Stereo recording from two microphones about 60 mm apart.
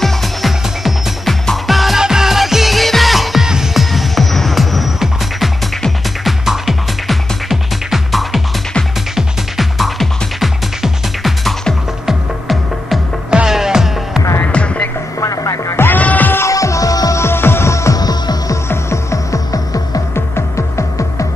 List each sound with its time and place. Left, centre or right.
0.0 s music: centre
13.3 s music: centre
14.5 s music: centre
15.1 s music: left
15.7 s music: left
16.0 s music: left
16.4 s music: left
17.2 s music: left
17.9 s music: left
18.7 s music: left
19.5 s music: left
20.2 s music: left